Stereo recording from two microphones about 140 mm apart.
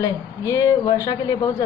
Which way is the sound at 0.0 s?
25° left (ahead or behind).